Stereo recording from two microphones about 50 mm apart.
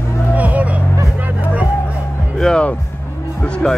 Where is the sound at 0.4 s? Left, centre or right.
Right.